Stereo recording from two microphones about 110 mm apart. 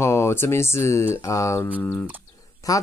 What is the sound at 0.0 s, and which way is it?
Speech, 25° left (ahead or behind).